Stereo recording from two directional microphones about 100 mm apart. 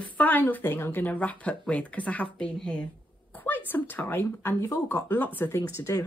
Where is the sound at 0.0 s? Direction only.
15° left (ahead or behind).